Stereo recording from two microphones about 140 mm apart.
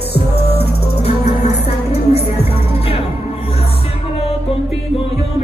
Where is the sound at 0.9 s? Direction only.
50° left (ahead or behind).